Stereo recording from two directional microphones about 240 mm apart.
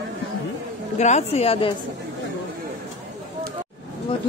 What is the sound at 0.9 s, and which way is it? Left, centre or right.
Speech, left.